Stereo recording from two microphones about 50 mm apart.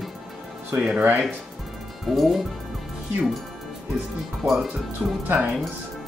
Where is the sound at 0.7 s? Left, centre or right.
Right.